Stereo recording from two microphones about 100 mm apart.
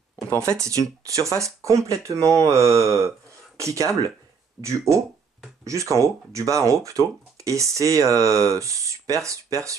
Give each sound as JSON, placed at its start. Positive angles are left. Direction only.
{"t": 0.4, "sound": "speech", "side_deg": -30}